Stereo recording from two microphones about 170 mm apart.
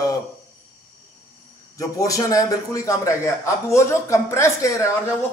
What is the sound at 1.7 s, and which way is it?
A man's voice, 20° left (ahead or behind).